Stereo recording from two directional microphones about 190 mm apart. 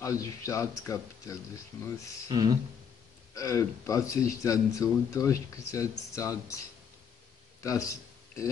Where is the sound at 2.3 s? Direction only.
20° right (ahead or behind).